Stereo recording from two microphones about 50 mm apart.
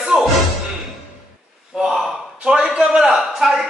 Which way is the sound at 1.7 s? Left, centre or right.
Centre.